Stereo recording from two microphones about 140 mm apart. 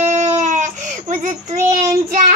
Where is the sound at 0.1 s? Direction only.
55° right (ahead or behind).